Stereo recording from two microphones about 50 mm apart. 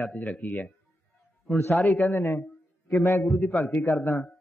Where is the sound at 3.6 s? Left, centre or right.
Left.